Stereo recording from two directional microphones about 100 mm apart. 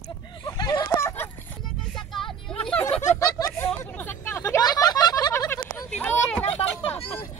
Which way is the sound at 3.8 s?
15° left (ahead or behind).